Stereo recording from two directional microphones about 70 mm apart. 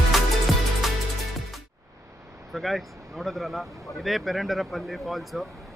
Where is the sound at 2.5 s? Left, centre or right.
Centre.